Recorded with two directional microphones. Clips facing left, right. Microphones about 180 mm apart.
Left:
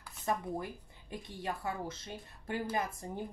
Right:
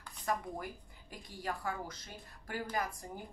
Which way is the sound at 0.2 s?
25° left (ahead or behind).